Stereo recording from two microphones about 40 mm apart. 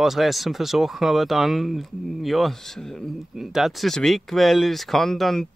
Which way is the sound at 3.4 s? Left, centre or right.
Centre.